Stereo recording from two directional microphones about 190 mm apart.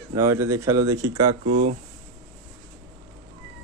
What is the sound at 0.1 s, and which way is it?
Speech, 15° right (ahead or behind).